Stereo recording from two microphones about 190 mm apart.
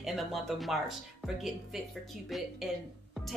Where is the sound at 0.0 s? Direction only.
Centre (ahead or behind).